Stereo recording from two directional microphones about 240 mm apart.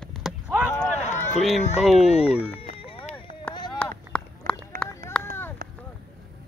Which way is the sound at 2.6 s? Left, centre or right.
Left.